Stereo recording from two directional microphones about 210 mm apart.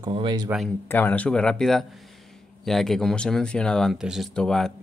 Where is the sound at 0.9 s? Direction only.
10° left (ahead or behind).